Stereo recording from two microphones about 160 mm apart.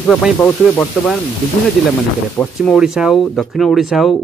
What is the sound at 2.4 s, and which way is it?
Speech, 10° left (ahead or behind).